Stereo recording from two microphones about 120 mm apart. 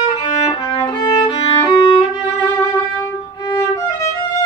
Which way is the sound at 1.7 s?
40° left (ahead or behind).